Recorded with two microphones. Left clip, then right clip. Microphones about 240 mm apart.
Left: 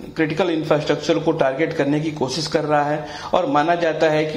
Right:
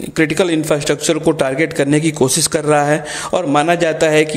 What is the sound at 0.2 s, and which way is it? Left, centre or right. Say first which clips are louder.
A man's voice: right 5 dB; right.